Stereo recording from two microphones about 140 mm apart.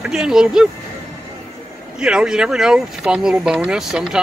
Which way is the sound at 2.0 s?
5° right (ahead or behind).